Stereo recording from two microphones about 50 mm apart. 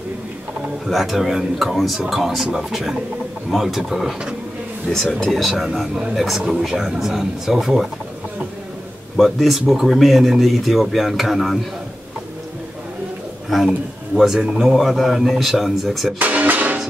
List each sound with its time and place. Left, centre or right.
0.8 s speech: centre
9.2 s speech: centre
14.1 s speech: centre
16.2 s music: right